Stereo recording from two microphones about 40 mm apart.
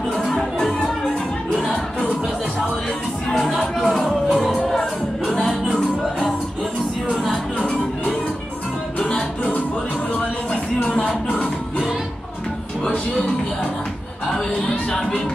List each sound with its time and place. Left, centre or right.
0.7 s music: centre
3.3 s music: centre
7.5 s music: left
10.5 s music: left
15.0 s speech: centre